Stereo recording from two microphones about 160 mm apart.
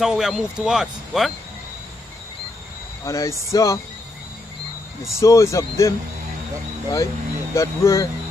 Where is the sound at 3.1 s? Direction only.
20° left (ahead or behind).